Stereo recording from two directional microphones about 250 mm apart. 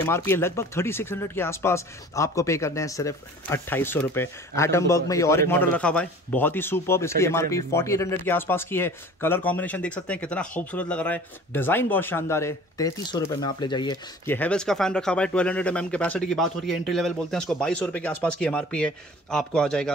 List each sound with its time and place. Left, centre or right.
0.0 s speech: centre